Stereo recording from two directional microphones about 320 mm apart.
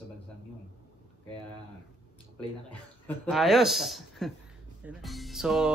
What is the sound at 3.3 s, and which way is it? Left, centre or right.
Speech, centre.